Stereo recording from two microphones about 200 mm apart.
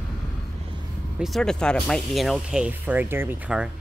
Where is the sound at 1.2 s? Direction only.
Centre (ahead or behind).